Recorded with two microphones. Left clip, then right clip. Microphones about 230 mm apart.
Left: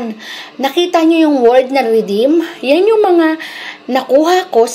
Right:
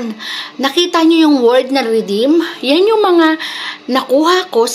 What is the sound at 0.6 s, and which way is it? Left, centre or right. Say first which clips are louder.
A woman's voice: left 1 dB; centre.